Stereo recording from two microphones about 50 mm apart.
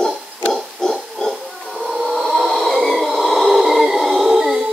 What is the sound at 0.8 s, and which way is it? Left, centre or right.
Oink, centre.